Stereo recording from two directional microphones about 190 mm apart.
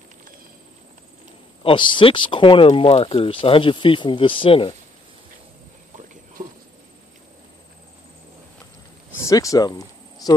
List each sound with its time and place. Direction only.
1.6 s speech: 25° left (ahead or behind)
9.2 s speech: 15° left (ahead or behind)
10.2 s cricket: 20° left (ahead or behind)